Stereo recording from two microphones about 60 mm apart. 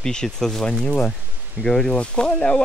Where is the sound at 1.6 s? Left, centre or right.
Centre.